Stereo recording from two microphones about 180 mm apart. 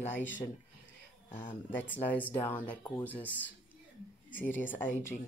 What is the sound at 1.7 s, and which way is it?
Speech, 10° left (ahead or behind).